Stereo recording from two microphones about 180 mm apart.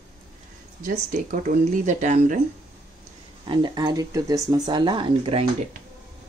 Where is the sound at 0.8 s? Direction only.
45° right (ahead or behind).